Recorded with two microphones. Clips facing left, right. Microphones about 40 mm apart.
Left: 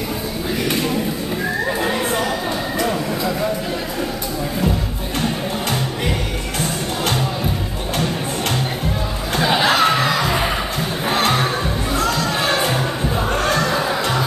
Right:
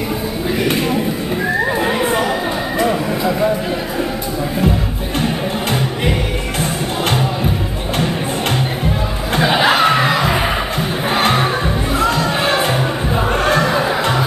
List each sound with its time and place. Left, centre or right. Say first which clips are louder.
0.7 s a sound: right 3 dB; centre
1.6 s neigh: right 3 dB; centre
2.8 s a sound: right 5 dB; centre
5.2 s music: right 3 dB; centre
9.4 s chuckle: right 3 dB; centre
11.1 s music: right 3 dB; centre
12.0 s crowd: right 4 dB; centre